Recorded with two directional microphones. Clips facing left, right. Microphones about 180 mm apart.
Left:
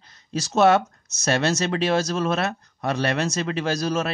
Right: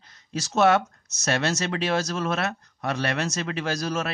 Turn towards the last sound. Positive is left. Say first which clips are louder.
# left 4 dB
turn(degrees=30)  # may be behind; listen again after turning